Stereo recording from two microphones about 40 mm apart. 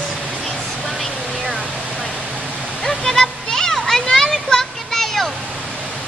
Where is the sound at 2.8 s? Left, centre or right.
Centre.